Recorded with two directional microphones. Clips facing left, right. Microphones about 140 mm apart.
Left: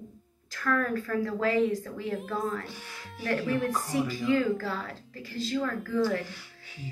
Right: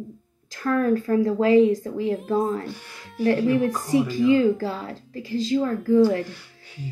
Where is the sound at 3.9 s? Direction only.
20° right (ahead or behind).